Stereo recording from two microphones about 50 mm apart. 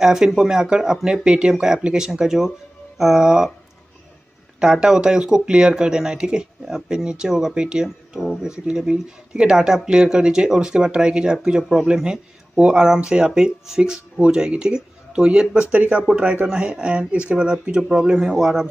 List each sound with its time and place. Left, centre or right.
0.0 s speech: centre
4.6 s speech: centre
15.7 s speech: right
16.4 s speech: centre